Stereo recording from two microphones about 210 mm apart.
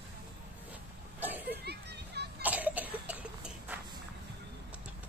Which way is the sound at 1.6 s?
50° right (ahead or behind).